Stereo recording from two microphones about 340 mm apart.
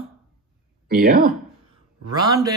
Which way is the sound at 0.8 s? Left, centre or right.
Right.